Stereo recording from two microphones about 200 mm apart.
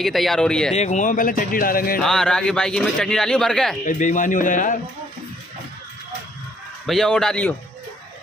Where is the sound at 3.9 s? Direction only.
40° left (ahead or behind).